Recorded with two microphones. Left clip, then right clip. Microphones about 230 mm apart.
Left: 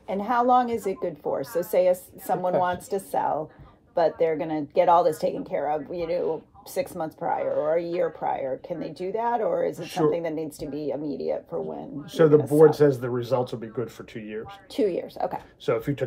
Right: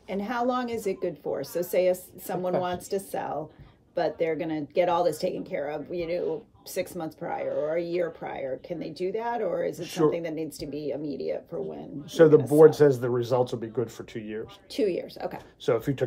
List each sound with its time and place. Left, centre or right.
0.1 s a woman's voice: centre
12.2 s speech: right
14.7 s a woman's voice: centre